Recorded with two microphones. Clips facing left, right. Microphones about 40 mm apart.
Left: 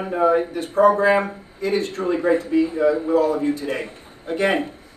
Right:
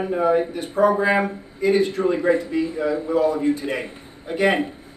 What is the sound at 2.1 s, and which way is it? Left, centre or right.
A man's voice, centre.